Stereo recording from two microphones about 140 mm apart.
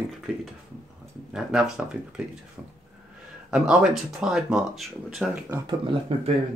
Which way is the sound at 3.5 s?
5° right (ahead or behind).